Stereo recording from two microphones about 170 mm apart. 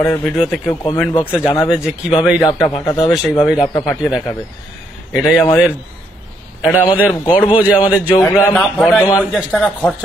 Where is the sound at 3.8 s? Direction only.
20° left (ahead or behind).